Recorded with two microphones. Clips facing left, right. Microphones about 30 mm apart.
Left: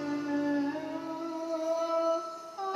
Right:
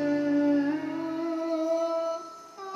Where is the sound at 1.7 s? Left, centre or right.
Centre.